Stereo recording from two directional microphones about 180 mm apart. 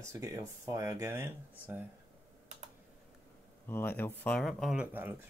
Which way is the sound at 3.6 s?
10° left (ahead or behind).